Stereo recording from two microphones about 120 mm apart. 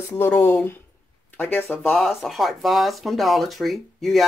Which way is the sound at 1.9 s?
Centre (ahead or behind).